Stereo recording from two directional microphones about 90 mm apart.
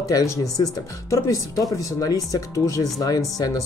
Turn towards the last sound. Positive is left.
turn(degrees=40)  # may be behind; listen again after turning